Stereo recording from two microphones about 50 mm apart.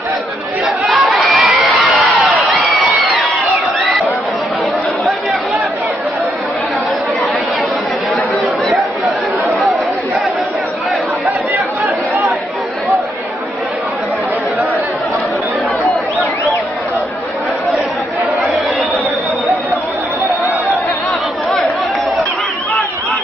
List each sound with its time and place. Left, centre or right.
0.8 s crowd: centre
11.2 s chatter: right